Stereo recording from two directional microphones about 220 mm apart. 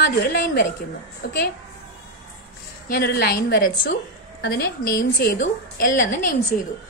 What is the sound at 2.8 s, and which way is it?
A woman's voice, 45° left (ahead or behind).